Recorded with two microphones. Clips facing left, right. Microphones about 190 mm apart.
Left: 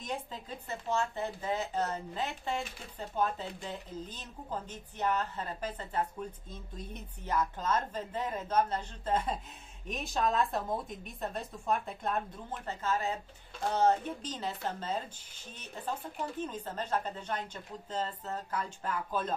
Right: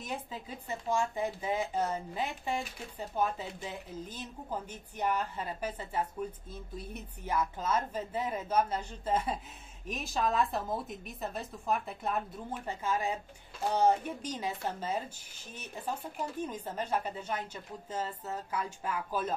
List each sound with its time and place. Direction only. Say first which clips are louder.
0.0 s a woman's voice: even; 5° right (ahead or behind)